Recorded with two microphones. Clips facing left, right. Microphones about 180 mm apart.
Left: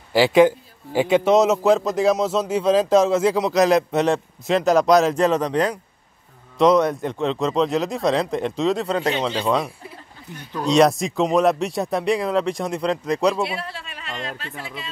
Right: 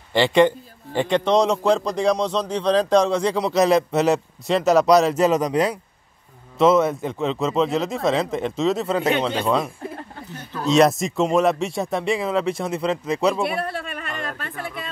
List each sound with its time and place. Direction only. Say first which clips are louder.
0.1 s a man's voice: left 2 dB; 5° left (ahead or behind)
10.6 s a man's voice: even; centre (ahead or behind)
13.4 s speech: right 2 dB; 55° right (ahead or behind)